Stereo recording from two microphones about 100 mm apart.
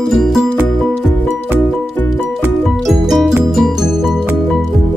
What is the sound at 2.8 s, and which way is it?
Music, centre (ahead or behind).